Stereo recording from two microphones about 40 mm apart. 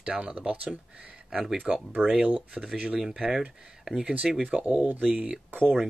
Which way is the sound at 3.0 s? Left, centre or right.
Centre.